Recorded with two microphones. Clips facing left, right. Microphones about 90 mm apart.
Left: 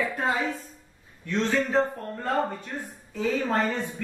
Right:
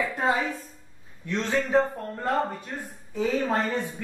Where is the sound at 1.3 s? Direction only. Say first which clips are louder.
Even; 20° right (ahead or behind).